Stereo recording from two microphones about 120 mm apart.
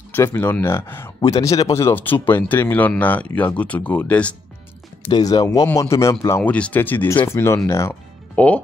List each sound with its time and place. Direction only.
0.1 s speech: 20° left (ahead or behind)
1.2 s speech: 30° left (ahead or behind); by 4.4 s 10° left (ahead or behind)
5.1 s speech: 35° left (ahead or behind)
6.4 s speech: 10° left (ahead or behind)
8.4 s speech: 10° left (ahead or behind)